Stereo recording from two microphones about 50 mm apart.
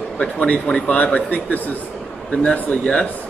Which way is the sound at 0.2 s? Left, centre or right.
Left.